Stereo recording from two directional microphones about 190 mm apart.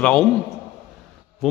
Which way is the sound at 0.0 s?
5° left (ahead or behind).